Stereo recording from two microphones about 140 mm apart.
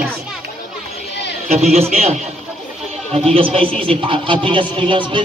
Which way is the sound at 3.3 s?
40° right (ahead or behind).